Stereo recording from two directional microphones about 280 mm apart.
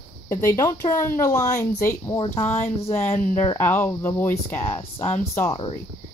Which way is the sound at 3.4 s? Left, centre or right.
Centre.